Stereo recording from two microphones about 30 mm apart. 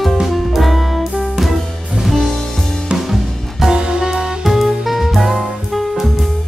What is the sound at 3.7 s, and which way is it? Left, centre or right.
Music, right.